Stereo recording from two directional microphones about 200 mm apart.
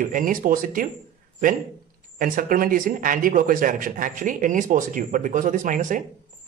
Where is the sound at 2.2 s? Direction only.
45° right (ahead or behind).